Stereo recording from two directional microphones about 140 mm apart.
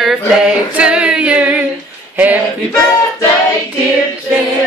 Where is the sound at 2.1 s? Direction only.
10° right (ahead or behind).